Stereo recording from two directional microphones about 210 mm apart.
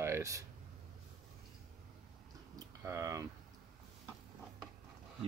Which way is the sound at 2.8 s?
15° right (ahead or behind).